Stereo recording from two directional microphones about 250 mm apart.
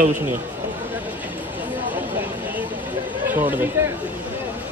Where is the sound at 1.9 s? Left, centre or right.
Centre.